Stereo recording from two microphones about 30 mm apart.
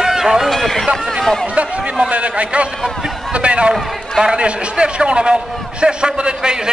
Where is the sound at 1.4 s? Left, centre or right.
Right.